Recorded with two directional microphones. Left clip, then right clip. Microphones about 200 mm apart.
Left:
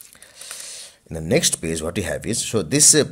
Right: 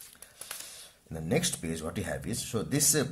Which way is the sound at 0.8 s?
40° left (ahead or behind).